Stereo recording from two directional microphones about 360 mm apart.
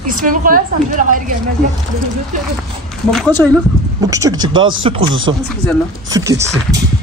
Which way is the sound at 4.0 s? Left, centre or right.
Centre.